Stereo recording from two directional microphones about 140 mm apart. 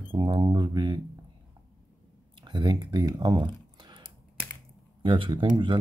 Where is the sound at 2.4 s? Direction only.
30° right (ahead or behind).